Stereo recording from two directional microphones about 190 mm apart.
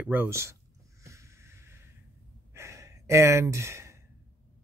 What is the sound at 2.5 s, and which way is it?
Sigh, 15° right (ahead or behind).